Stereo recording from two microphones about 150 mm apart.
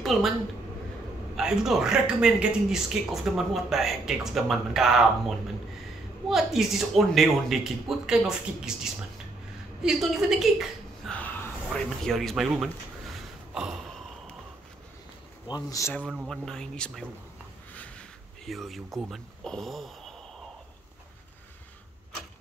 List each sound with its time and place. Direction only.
0.0 s a woman's voice: centre (ahead or behind)
1.3 s a man's voice: 5° right (ahead or behind)
6.2 s a man's voice: centre (ahead or behind)
11.1 s a man's voice: 10° left (ahead or behind)
13.1 s a sound: 5° right (ahead or behind)
15.4 s speech: 25° left (ahead or behind)
16.1 s a man's voice: centre (ahead or behind)
17.7 s a sound: 10° left (ahead or behind)